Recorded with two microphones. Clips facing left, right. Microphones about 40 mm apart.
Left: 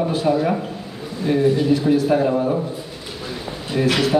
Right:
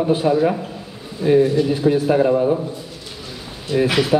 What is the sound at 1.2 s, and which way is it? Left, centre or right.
A man's voice, centre.